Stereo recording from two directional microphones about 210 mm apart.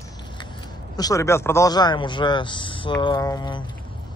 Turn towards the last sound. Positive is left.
turn(degrees=20)  # may be behind; listen again after turning